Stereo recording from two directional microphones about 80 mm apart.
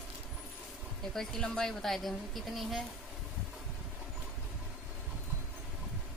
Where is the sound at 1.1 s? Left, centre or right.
Centre.